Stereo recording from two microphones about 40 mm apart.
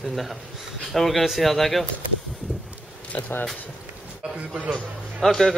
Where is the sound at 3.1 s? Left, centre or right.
Left.